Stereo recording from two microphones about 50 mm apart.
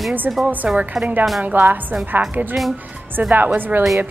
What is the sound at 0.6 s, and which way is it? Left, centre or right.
Speech, right.